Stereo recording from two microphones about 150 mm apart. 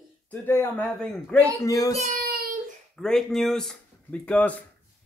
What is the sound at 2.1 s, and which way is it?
Child singing, 85° right.